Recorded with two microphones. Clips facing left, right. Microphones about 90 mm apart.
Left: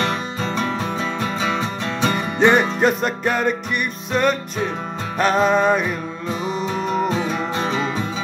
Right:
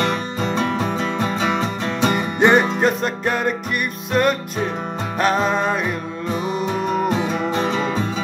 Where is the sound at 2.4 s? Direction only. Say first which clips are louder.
Even; 5° right (ahead or behind).